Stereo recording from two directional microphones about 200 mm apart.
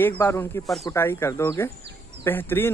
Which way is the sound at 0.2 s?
10° left (ahead or behind).